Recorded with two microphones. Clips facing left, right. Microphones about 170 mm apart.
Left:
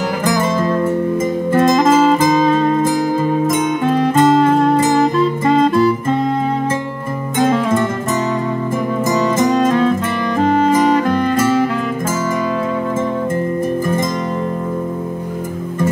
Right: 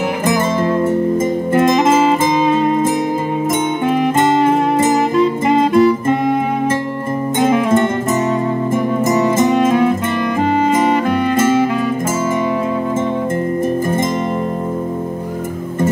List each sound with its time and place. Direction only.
0.2 s music: 25° right (ahead or behind)
7.3 s music: 25° right (ahead or behind)
9.0 s music: 25° right (ahead or behind)